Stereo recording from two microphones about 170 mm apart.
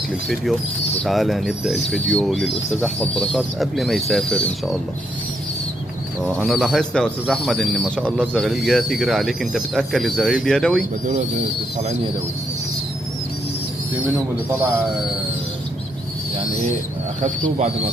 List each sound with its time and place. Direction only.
1.0 s speech: centre (ahead or behind)
6.2 s speech: centre (ahead or behind)
13.9 s speech: 10° right (ahead or behind)
17.2 s speech: 45° right (ahead or behind)